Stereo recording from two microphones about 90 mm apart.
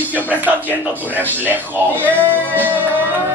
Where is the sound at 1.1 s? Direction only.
20° right (ahead or behind).